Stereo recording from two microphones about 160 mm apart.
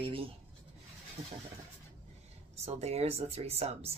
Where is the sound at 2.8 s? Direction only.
40° right (ahead or behind).